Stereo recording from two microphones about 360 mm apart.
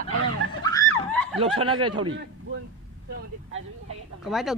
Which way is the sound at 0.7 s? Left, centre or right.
Centre.